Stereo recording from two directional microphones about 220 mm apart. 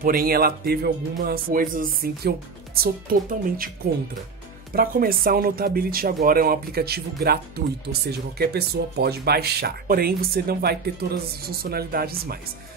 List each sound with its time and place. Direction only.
0.0 s speech: 40° right (ahead or behind)
4.7 s speech: 40° right (ahead or behind)